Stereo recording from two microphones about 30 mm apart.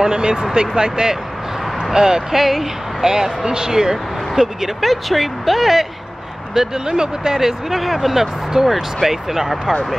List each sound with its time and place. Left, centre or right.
0.0 s speech: right
2.3 s speech: centre
3.0 s speech: centre
4.8 s speech: centre
6.5 s speech: centre
7.8 s speech: centre
8.6 s speech: right
9.0 s speech: centre